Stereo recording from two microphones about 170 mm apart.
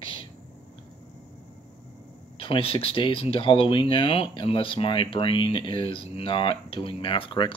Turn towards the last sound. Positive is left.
turn(degrees=30)  # may be behind; listen again after turning